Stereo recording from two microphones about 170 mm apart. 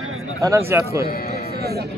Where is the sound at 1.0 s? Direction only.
60° left (ahead or behind).